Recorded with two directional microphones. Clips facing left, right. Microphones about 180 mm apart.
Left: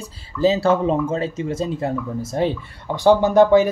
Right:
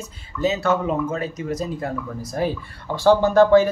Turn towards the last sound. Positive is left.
turn(degrees=15)  # may be behind; listen again after turning